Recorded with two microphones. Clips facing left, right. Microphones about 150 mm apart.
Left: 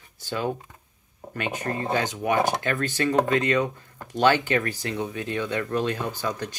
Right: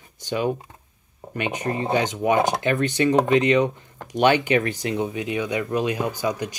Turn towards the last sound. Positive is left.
turn(degrees=-15)  # may be behind; listen again after turning